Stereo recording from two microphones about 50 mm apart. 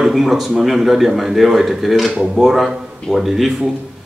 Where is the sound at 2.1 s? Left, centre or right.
Centre.